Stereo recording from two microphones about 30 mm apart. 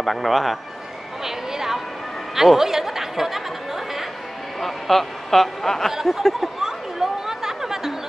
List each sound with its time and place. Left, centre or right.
0.0 s speech: centre
1.2 s a woman's voice: centre
4.6 s speech: centre
5.9 s speech: centre
6.6 s chatter: centre